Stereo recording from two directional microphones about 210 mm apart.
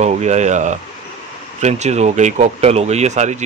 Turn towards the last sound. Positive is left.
turn(degrees=-35)  # may be behind; listen again after turning